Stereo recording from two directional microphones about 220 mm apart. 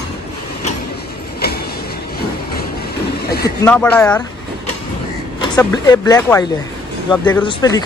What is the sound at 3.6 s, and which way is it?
Speech, 5° left (ahead or behind).